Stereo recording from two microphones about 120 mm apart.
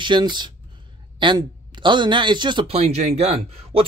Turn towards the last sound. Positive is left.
turn(degrees=-55)  # may be behind; listen again after turning